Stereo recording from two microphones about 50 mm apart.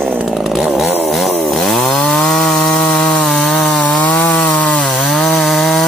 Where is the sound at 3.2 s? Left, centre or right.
Centre.